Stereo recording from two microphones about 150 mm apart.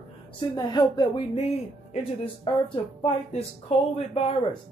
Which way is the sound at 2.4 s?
35° left (ahead or behind).